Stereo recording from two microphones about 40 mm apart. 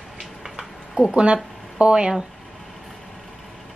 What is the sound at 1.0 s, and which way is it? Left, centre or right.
A woman's voice, right.